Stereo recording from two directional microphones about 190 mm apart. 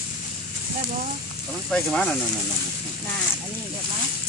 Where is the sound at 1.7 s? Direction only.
5° left (ahead or behind).